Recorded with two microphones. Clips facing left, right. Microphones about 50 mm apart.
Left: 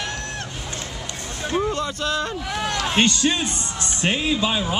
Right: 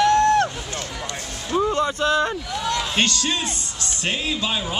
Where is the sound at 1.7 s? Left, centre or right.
Centre.